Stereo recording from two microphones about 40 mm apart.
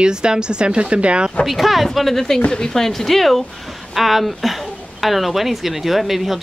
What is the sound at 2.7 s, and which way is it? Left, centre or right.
Speech, centre.